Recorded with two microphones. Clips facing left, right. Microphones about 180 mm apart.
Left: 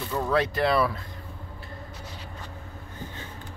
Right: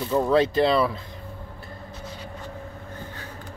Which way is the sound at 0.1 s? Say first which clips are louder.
Right 6 dB; 25° right (ahead or behind).